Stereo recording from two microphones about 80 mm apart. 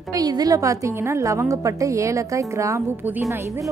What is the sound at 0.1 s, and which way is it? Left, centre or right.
Speech, right.